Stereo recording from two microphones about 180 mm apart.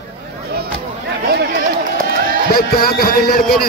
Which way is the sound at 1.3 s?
60° right (ahead or behind).